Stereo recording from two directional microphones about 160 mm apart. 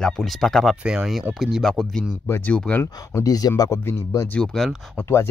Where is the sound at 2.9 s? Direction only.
20° left (ahead or behind); by 4.8 s centre (ahead or behind).